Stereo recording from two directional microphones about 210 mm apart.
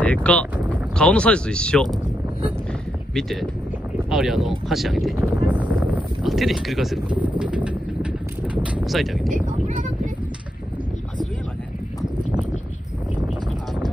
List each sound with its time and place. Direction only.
0.0 s speech: 5° left (ahead or behind)
3.2 s speech: centre (ahead or behind)
9.3 s speech: 35° right (ahead or behind)